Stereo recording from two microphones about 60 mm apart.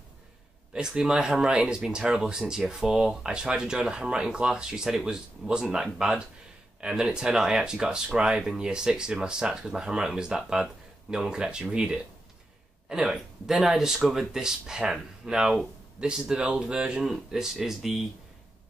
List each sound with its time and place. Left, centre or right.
0.7 s speech: centre